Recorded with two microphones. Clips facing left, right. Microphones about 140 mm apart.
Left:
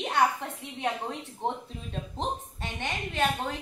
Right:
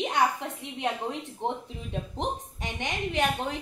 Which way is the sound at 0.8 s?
15° right (ahead or behind).